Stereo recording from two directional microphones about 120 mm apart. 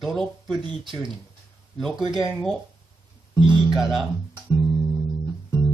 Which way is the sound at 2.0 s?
40° right (ahead or behind).